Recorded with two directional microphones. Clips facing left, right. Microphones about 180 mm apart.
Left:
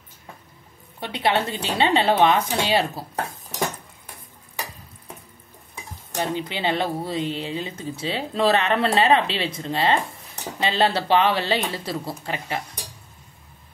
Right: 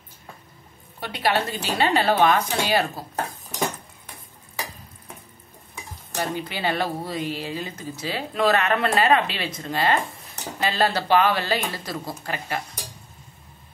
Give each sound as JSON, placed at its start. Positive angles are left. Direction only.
{"t": 1.0, "sound": "speech", "side_deg": 25}
{"t": 6.1, "sound": "speech", "side_deg": 20}